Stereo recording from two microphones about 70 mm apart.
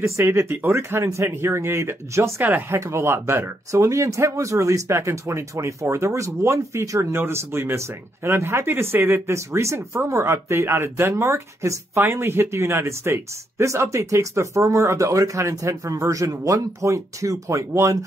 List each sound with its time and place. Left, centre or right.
0.0 s speech: right
2.4 s speech: right
2.8 s speech: right